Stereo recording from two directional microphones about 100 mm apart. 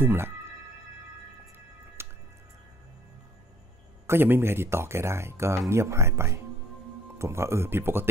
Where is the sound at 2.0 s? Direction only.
25° right (ahead or behind).